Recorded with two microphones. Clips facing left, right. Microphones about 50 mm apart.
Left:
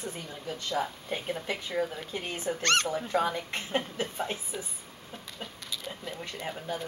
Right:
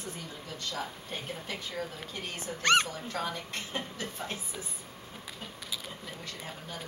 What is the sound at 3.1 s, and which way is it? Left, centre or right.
A woman's voice, left.